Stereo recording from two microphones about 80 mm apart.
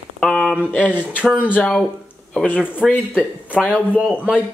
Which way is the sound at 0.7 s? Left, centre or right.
Left.